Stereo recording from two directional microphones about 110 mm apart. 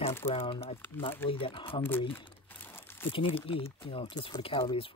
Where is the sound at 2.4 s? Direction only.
20° left (ahead or behind).